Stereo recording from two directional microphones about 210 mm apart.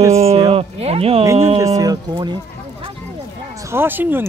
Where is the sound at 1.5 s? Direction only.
15° right (ahead or behind).